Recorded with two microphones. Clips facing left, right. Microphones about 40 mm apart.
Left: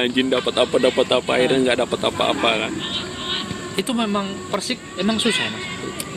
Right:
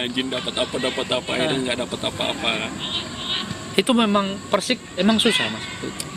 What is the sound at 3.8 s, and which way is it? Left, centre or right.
Speech, right.